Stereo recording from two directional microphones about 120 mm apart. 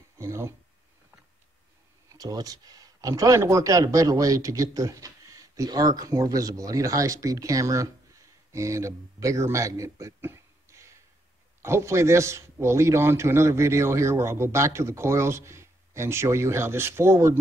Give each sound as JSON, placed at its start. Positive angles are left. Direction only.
{"t": 0.2, "sound": "a man's voice", "side_deg": -20}
{"t": 2.1, "sound": "a man's voice", "side_deg": -30}